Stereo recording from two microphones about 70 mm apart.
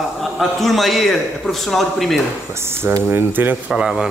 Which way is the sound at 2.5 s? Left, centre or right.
Right.